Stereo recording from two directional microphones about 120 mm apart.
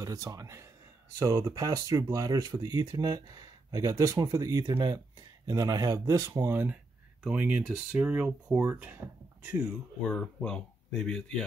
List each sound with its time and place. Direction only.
0.0 s speech: 30° right (ahead or behind)
10.0 s speech: 10° left (ahead or behind)